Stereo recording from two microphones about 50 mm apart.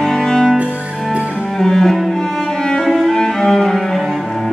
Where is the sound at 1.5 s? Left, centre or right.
Centre.